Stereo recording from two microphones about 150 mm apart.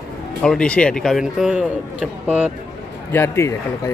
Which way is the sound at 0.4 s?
5° left (ahead or behind).